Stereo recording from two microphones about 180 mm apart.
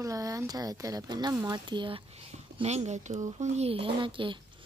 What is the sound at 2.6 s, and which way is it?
A woman's voice, 40° right (ahead or behind).